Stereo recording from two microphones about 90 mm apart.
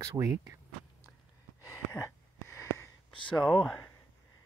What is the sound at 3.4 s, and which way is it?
Speech, centre (ahead or behind).